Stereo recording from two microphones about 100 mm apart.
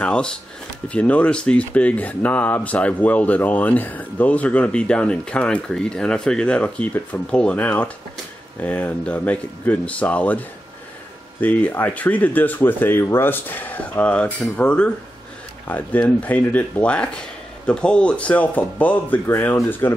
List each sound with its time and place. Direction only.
0.0 s speech: 10° left (ahead or behind)
11.4 s speech: 15° left (ahead or behind)